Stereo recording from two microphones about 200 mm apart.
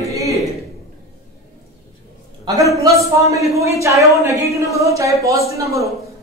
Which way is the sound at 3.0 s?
15° right (ahead or behind).